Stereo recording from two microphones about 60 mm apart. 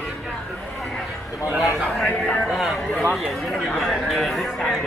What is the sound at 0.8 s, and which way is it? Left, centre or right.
Speech, centre.